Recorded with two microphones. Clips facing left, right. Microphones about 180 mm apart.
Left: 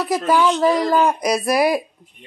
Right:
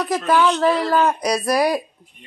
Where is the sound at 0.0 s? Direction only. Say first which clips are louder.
Left 1 dB; 10° left (ahead or behind).